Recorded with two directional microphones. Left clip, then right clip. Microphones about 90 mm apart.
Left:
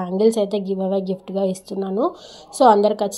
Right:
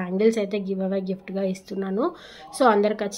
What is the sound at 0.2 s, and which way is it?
A woman's voice, 30° left (ahead or behind).